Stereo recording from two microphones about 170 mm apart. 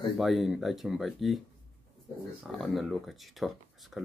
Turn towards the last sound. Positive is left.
turn(degrees=0)  # may be behind; listen again after turning